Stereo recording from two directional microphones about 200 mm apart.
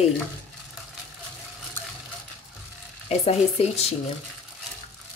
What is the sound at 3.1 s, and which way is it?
Speech, 30° left (ahead or behind).